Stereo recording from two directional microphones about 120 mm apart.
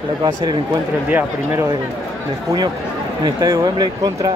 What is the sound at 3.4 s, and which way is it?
Speech, 30° right (ahead or behind).